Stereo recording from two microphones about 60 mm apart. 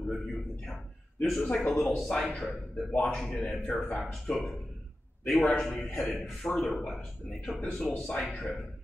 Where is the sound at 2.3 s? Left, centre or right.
Centre.